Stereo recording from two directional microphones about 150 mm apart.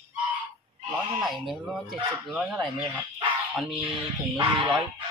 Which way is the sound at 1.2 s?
Centre (ahead or behind).